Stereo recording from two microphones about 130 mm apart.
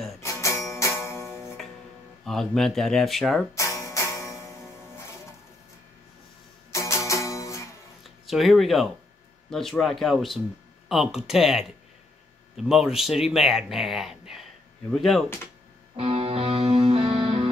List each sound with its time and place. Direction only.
0.2 s music: 25° left (ahead or behind)
2.2 s speech: 5° left (ahead or behind)
3.5 s music: 25° left (ahead or behind)
6.7 s music: 20° left (ahead or behind)
8.0 s a sound: centre (ahead or behind)
9.5 s speech: 5° left (ahead or behind)
16.0 s music: 50° right (ahead or behind)